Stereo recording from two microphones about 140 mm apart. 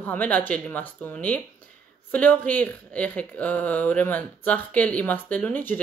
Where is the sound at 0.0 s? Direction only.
10° left (ahead or behind).